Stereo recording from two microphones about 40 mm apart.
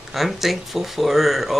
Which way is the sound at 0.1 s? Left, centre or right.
Centre.